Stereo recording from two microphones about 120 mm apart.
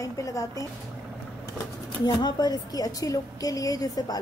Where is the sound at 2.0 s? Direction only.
35° left (ahead or behind).